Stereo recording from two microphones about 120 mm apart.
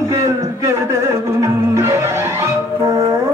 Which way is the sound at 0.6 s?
25° right (ahead or behind).